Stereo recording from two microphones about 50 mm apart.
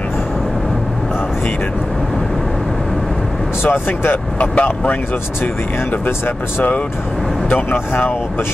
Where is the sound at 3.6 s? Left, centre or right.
Left.